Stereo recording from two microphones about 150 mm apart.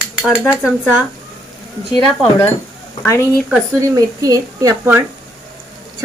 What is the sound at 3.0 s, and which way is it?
Speech, 20° left (ahead or behind).